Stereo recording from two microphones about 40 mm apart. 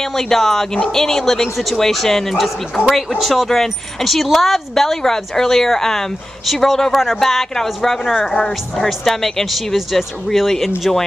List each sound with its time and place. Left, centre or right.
0.0 s speech: centre
8.8 s speech: centre